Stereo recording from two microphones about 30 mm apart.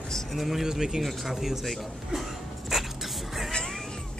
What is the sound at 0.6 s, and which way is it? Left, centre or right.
Speech, centre.